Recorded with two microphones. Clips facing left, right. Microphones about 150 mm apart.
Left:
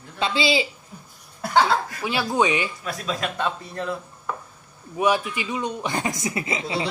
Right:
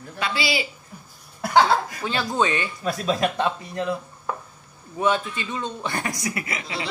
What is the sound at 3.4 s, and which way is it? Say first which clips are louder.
Speech: right 2 dB; 15° right (ahead or behind).